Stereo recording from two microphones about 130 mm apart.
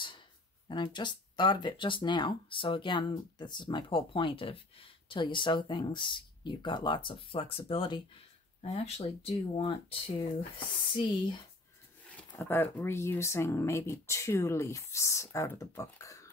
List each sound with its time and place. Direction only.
0.7 s speech: 35° left (ahead or behind)
8.6 s speech: 55° left (ahead or behind)
9.6 s speech: 40° left (ahead or behind)
12.4 s speech: 15° left (ahead or behind)